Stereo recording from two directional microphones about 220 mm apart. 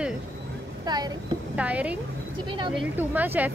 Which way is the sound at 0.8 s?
20° right (ahead or behind).